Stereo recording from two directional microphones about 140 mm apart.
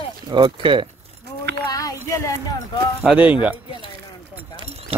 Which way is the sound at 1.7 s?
25° left (ahead or behind).